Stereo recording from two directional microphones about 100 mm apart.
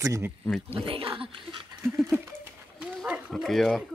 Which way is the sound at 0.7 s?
60° right (ahead or behind).